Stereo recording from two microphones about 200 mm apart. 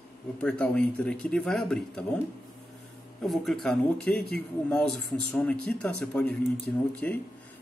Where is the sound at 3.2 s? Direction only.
Centre (ahead or behind).